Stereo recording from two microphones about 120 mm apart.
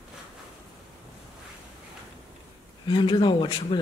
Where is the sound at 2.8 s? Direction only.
40° left (ahead or behind).